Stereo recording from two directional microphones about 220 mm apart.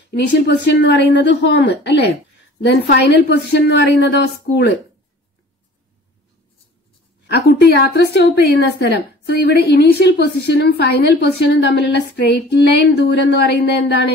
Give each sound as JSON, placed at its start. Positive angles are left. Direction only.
{"t": 0.1, "sound": "a woman's voice", "side_deg": 50}
{"t": 7.2, "sound": "a woman's voice", "side_deg": 50}